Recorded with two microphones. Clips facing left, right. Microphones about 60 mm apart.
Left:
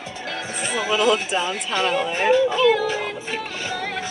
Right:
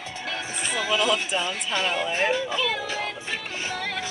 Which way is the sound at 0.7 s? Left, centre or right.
Centre.